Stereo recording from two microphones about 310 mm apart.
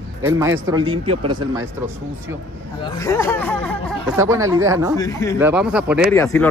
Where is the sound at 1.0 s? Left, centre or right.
Right.